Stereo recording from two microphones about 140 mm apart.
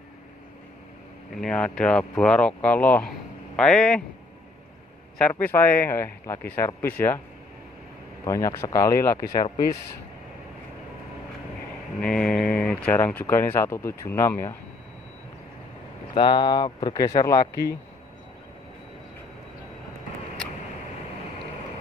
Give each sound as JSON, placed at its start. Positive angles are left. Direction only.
{"t": 1.4, "sound": "speech", "side_deg": 5}
{"t": 3.1, "sound": "a sound", "side_deg": 5}
{"t": 5.3, "sound": "speech", "side_deg": 15}
{"t": 8.3, "sound": "speech", "side_deg": 25}
{"t": 12.0, "sound": "mantra", "side_deg": 5}
{"t": 12.6, "sound": "speech", "side_deg": 10}
{"t": 16.2, "sound": "speech", "side_deg": 35}